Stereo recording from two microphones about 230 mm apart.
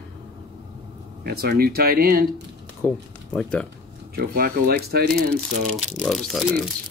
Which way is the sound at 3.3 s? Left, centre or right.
Centre.